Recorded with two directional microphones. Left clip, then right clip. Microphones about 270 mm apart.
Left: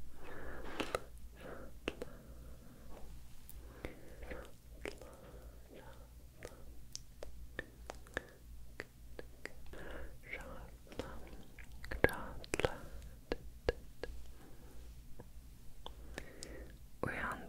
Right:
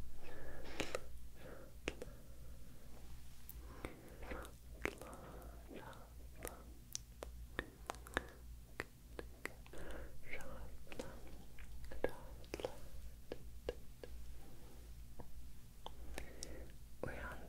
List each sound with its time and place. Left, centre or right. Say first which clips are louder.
0.2 s a sound: left 6 dB; centre
3.7 s whispering: left 2 dB; centre
4.8 s chewing: right 3 dB; centre
6.4 s whispering: right 1 dB; centre
9.7 s whispering: left 3 dB; centre
11.9 s whispering: left 9 dB; left
13.3 s a sound: left 9 dB; left
15.8 s whispering: left 2 dB; centre
17.0 s whispering: left 8 dB; left